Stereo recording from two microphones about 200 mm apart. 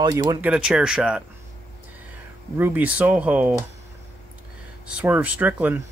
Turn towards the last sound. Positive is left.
turn(degrees=-10)  # may be behind; listen again after turning